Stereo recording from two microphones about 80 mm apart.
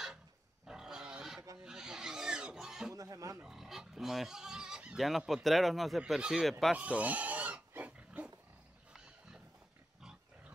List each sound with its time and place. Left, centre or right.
0.7 s pig: centre
2.9 s a sound: right
3.4 s speech: centre
6.8 s pig: centre